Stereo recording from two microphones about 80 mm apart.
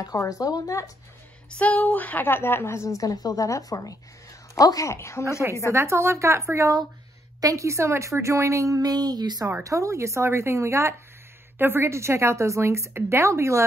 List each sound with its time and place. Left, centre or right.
0.0 s speech: left
1.6 s a woman's voice: centre; by 5.2 s left
5.7 s a woman's voice: right
9.6 s a woman's voice: right